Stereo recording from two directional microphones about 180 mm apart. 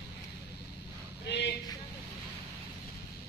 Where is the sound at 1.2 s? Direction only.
70° left (ahead or behind).